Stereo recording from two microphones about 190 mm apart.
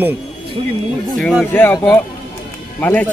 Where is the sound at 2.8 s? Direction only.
10° left (ahead or behind).